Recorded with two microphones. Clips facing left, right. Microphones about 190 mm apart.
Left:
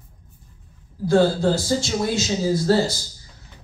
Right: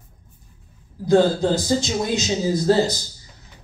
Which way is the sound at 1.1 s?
20° right (ahead or behind).